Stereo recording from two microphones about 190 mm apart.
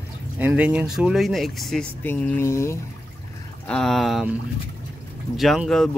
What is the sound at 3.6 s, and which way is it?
Speech, centre (ahead or behind).